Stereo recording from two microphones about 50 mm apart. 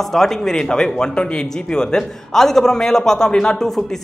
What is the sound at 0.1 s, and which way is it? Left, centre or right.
Speech, centre.